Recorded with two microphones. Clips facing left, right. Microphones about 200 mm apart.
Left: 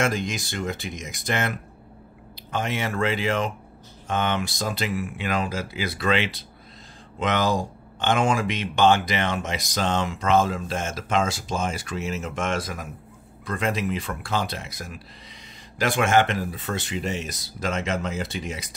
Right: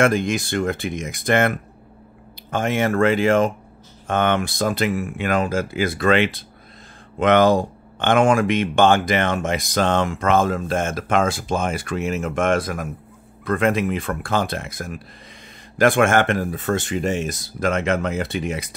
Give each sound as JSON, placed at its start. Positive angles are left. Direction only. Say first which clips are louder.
{"t": 0.0, "sound": "speech", "louder": "right 7 dB", "side_deg": -55}